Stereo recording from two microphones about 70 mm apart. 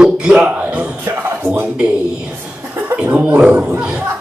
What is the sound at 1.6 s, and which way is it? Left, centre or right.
A man's voice, centre.